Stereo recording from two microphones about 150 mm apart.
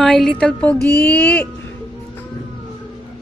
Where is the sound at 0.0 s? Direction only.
5° left (ahead or behind).